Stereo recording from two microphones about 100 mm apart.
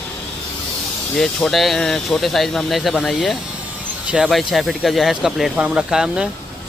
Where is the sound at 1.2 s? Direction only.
5° left (ahead or behind).